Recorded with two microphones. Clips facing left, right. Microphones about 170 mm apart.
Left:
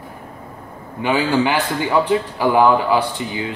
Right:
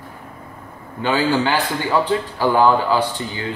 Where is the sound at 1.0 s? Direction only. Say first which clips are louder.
Left 1 dB; 15° left (ahead or behind).